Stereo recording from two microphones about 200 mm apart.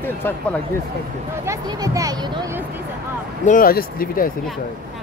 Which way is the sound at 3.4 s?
45° left (ahead or behind).